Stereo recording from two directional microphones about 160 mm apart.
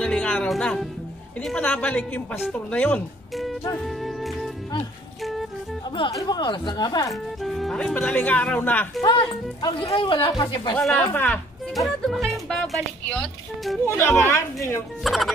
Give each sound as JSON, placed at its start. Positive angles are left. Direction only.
{"t": 0.0, "sound": "speech", "side_deg": 5}
{"t": 3.8, "sound": "music", "side_deg": 0}
{"t": 5.9, "sound": "speech", "side_deg": 30}
{"t": 7.1, "sound": "speech", "side_deg": 0}
{"t": 9.0, "sound": "speech", "side_deg": 30}
{"t": 10.9, "sound": "speech", "side_deg": 15}
{"t": 11.7, "sound": "speech", "side_deg": 0}
{"t": 15.0, "sound": "speech", "side_deg": 0}